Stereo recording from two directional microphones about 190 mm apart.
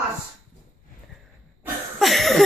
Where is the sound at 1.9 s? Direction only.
Centre (ahead or behind).